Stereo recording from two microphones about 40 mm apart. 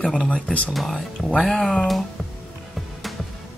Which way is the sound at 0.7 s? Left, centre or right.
Centre.